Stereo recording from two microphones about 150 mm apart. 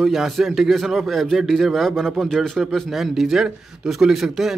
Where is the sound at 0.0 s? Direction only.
Centre (ahead or behind).